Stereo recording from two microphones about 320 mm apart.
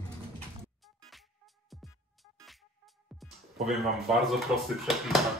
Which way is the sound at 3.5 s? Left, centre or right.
Centre.